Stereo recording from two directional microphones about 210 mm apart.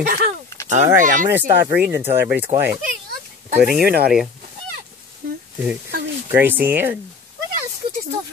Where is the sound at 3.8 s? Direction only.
50° right (ahead or behind).